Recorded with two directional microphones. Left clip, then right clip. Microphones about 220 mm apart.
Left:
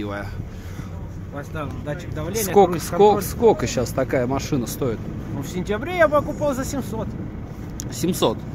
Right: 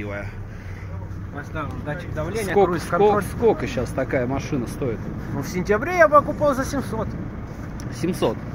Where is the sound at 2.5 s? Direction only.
30° left (ahead or behind).